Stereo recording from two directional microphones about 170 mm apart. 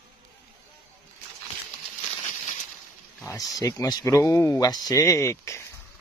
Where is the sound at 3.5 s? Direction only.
20° left (ahead or behind).